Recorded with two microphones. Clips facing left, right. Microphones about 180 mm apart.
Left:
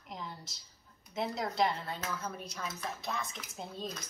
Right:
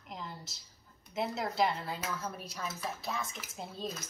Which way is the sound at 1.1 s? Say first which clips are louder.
Even; centre (ahead or behind).